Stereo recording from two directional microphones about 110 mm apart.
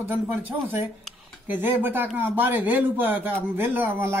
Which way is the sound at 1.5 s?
20° right (ahead or behind).